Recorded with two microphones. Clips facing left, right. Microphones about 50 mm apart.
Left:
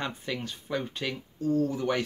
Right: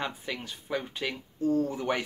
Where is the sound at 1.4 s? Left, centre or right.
Right.